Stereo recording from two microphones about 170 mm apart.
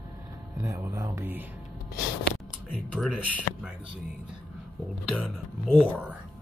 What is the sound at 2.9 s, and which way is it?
Speech, centre (ahead or behind).